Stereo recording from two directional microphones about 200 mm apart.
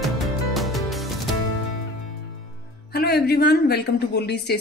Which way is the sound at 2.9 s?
50° left (ahead or behind).